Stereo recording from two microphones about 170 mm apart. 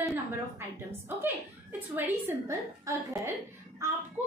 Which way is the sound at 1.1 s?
15° right (ahead or behind).